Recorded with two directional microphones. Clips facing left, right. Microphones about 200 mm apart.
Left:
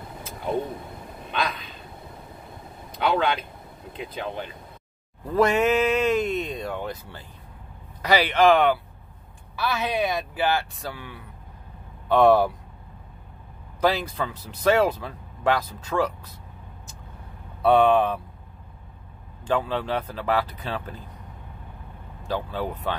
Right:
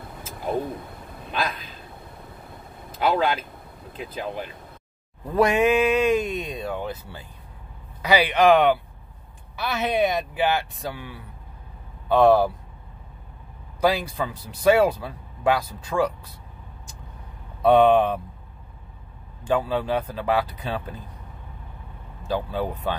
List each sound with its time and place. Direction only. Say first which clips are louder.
1.3 s speech: even; 5° right (ahead or behind)
2.9 s speech: right 1 dB; centre (ahead or behind)
12.1 s speech: right 1 dB; centre (ahead or behind)
13.7 s speech: right 1 dB; 10° right (ahead or behind)
17.6 s speech: right 2 dB; 20° right (ahead or behind)
19.4 s speech: right 2 dB; 10° right (ahead or behind)